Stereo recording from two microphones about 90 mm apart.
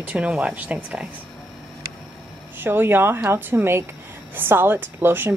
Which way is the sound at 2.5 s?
25° right (ahead or behind).